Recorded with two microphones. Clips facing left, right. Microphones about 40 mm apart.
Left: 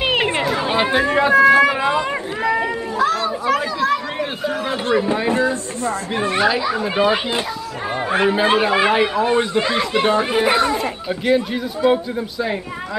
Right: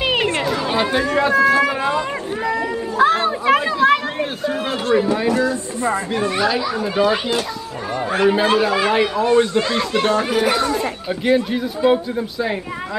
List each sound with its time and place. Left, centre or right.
0.2 s chatter: centre
0.6 s speech: left
1.4 s run: centre
3.0 s chatter: right
5.0 s speech: centre
8.5 s speech: left
8.9 s speech: centre
10.8 s speech: centre